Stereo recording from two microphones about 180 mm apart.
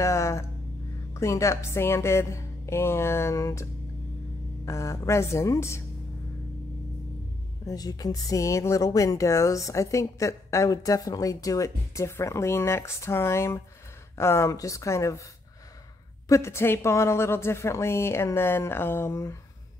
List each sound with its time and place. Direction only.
0.0 s speech: 15° left (ahead or behind)
4.6 s speech: 15° left (ahead or behind)
7.6 s speech: 20° left (ahead or behind)
16.3 s speech: 15° left (ahead or behind)